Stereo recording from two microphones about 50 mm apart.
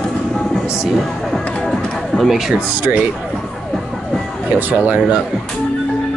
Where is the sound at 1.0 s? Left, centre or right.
Centre.